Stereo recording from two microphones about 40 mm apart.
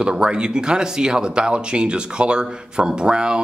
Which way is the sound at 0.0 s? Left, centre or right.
Right.